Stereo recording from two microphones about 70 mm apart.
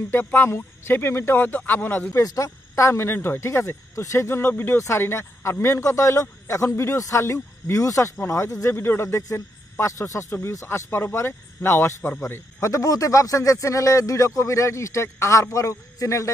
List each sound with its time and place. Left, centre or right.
0.1 s speech: left
0.5 s speech: left
2.1 s speech: left
8.7 s speech: left
12.3 s speech: left